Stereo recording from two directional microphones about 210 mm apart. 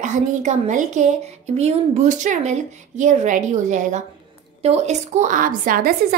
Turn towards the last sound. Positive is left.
turn(degrees=-45)  # may be behind; listen again after turning